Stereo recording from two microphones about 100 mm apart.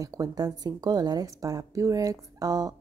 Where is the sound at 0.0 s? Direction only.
35° right (ahead or behind).